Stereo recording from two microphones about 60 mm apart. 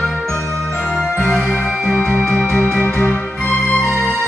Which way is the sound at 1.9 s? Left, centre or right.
Left.